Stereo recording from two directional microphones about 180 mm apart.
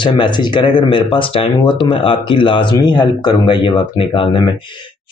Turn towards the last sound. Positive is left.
turn(degrees=25)  # may be behind; listen again after turning